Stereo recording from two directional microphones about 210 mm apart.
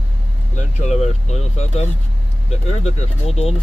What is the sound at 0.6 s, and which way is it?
Speech, 30° left (ahead or behind).